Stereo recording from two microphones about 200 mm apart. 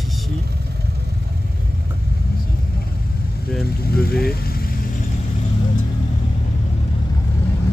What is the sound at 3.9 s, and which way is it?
Speech, 50° left (ahead or behind).